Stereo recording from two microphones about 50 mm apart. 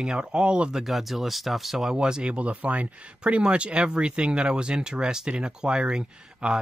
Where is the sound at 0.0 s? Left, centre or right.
Centre.